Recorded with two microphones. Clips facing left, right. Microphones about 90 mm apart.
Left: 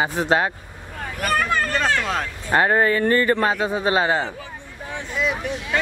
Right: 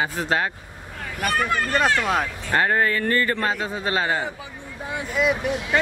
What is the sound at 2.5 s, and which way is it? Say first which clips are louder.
A man's voice: left 4 dB; 20° left (ahead or behind).